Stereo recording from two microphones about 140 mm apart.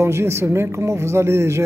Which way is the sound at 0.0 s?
20° right (ahead or behind).